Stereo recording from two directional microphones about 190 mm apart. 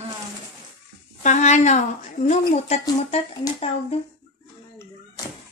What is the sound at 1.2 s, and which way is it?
Speech, 35° left (ahead or behind).